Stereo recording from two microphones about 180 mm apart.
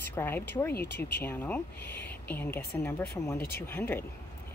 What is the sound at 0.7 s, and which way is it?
Speech, 65° left (ahead or behind).